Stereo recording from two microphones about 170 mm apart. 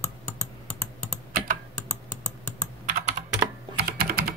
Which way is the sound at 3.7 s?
60° right (ahead or behind).